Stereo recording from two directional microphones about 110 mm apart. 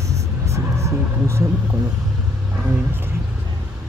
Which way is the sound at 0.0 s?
30° right (ahead or behind).